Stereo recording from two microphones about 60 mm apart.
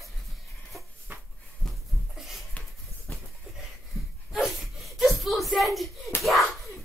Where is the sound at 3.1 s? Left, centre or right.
Left.